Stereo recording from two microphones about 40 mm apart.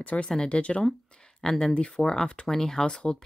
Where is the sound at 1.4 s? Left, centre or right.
Centre.